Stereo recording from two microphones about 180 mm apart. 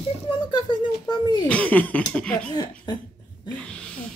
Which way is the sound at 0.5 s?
25° left (ahead or behind).